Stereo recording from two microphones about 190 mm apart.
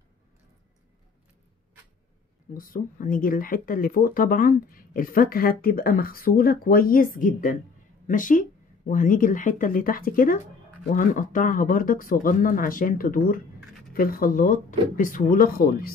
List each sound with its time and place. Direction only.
2.5 s speech: 50° left (ahead or behind)